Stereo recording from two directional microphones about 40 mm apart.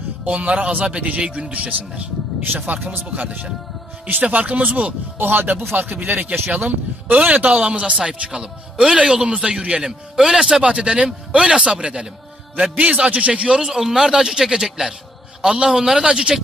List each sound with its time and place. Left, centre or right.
0.2 s a man's voice: right
5.2 s speech: right
6.0 s a man's voice: right
13.7 s a woman's voice: centre